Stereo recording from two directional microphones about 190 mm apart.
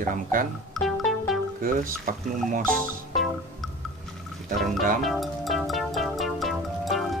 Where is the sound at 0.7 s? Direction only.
Centre (ahead or behind).